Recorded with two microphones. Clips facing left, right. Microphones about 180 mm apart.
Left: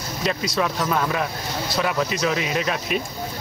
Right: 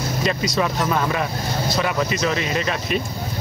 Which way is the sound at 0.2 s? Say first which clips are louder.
Right 1 dB; centre (ahead or behind).